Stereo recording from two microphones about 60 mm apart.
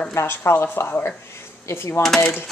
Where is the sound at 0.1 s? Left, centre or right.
Left.